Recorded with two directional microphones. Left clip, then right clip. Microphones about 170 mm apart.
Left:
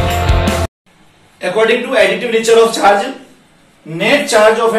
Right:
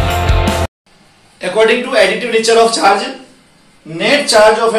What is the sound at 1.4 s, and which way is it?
A man's voice, 20° right (ahead or behind).